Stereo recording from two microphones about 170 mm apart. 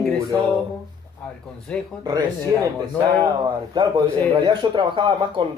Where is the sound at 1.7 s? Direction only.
5° left (ahead or behind).